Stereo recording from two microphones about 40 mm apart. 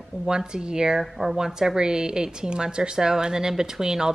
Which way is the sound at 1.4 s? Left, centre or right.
Centre.